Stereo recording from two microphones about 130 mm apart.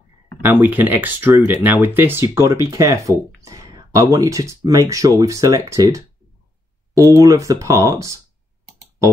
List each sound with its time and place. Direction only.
0.4 s speech: 15° right (ahead or behind)